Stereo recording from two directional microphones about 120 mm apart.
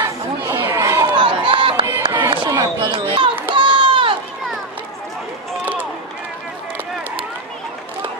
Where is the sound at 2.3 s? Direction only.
40° right (ahead or behind).